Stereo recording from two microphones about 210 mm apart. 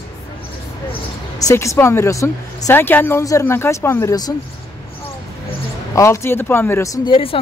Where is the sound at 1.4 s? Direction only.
15° left (ahead or behind).